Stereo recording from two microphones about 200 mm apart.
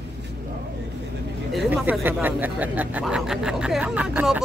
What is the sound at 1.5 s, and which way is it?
Speech, centre (ahead or behind).